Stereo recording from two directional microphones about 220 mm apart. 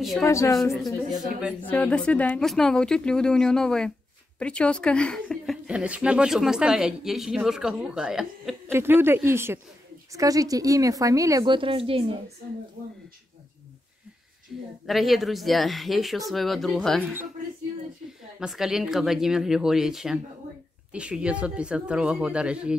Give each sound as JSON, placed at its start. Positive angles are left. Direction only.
{"t": 0.2, "sound": "a woman's voice", "side_deg": 15}
{"t": 1.7, "sound": "a woman's voice", "side_deg": 5}
{"t": 14.9, "sound": "a woman's voice", "side_deg": 0}
{"t": 18.4, "sound": "a woman's voice", "side_deg": 0}